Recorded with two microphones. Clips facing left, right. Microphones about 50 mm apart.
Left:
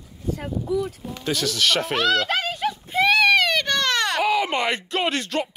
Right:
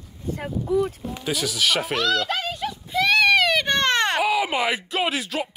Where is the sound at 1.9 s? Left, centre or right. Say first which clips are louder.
Left 2 dB; left.